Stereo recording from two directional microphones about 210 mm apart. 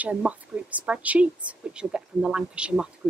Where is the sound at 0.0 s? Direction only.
5° right (ahead or behind).